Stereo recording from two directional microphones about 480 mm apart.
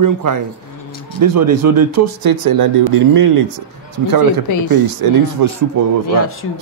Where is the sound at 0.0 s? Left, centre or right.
Right.